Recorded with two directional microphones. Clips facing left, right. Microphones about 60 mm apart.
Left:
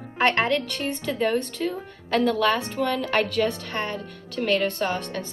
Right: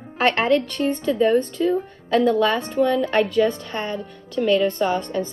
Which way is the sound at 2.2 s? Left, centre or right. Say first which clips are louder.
Right 1 dB; right.